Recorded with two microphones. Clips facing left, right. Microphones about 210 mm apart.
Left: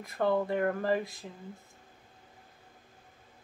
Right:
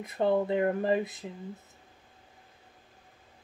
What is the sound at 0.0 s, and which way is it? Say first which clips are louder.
Speech: right 2 dB; 20° right (ahead or behind).